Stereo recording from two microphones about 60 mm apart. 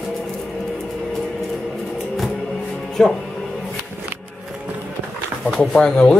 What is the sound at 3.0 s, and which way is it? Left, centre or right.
Speech, centre.